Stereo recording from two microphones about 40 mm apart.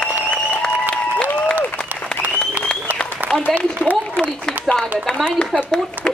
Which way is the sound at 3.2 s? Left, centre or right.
Right.